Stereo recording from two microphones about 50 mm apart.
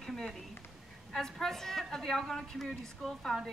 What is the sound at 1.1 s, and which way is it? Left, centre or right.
Speech, centre.